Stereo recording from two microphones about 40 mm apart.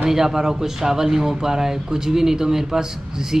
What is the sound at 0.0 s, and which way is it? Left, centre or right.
Speech, centre.